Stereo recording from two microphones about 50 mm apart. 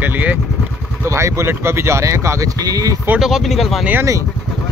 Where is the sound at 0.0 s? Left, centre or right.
Right.